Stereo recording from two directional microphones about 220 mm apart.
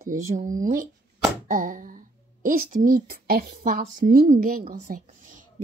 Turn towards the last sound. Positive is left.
turn(degrees=-35)  # may be behind; listen again after turning